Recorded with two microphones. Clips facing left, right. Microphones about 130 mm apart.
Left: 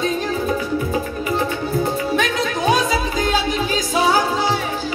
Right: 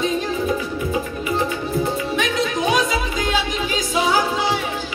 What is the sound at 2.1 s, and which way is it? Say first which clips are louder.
Music: left 1 dB; 35° left (ahead or behind).